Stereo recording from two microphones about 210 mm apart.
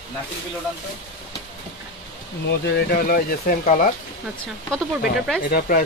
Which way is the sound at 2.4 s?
45° left (ahead or behind).